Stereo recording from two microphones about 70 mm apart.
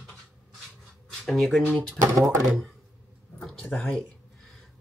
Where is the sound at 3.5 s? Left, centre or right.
Centre.